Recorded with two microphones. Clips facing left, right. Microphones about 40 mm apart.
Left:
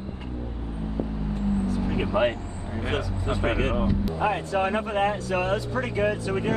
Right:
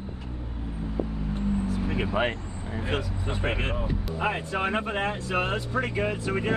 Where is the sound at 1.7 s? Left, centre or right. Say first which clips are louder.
Left 2 dB; right.